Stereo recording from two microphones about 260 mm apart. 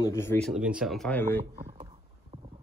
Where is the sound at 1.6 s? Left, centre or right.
Right.